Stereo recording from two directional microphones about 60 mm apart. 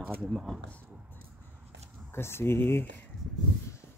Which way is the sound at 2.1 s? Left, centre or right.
Left.